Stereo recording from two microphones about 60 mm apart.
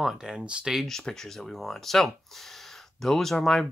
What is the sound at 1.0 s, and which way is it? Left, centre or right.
Speech, centre.